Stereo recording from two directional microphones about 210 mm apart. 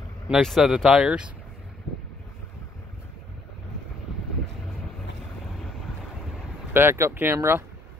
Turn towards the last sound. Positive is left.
turn(degrees=-10)  # may be behind; listen again after turning